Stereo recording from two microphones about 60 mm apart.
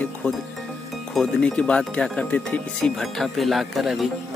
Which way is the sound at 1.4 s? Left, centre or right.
Centre.